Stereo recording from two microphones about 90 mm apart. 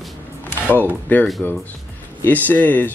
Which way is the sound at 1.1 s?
20° left (ahead or behind).